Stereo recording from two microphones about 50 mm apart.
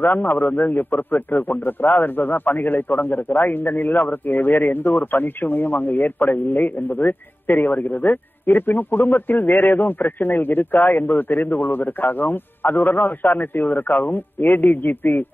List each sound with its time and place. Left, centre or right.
0.0 s a man's voice: left